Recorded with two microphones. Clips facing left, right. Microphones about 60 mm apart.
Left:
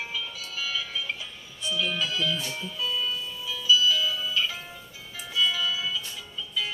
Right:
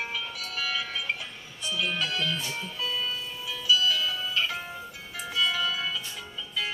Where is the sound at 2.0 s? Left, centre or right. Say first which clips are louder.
Left 1 dB; right.